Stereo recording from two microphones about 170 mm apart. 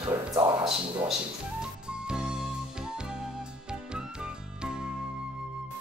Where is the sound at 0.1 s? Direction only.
25° right (ahead or behind).